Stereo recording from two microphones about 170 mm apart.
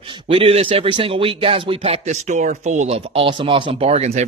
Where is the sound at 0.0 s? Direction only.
30° right (ahead or behind).